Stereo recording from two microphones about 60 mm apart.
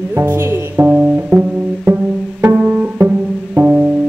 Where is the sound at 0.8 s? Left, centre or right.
Right.